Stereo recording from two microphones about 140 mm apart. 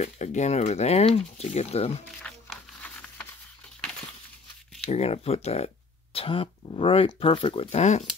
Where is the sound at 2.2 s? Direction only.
Centre (ahead or behind).